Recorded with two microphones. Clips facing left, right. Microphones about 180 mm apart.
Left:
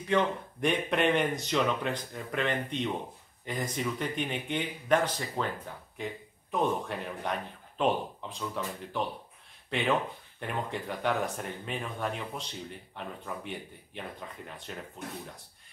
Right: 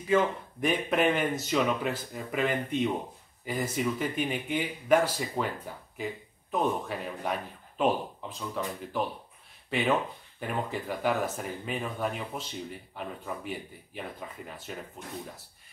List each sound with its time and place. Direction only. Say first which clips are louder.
0.1 s a man's voice: right 2 dB; centre (ahead or behind)